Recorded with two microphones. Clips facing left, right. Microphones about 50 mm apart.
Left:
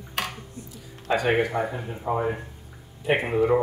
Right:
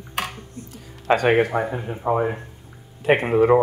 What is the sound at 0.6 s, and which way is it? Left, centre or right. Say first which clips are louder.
Speech: right 2 dB; right.